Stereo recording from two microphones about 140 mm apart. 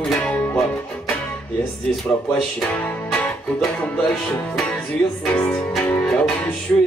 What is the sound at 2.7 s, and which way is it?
Music, 10° left (ahead or behind).